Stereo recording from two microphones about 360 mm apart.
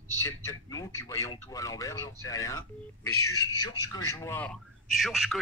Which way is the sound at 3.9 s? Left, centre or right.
Centre.